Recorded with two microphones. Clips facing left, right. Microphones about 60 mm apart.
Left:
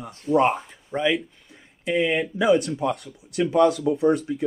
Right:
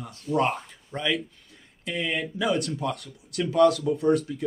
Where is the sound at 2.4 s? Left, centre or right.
Centre.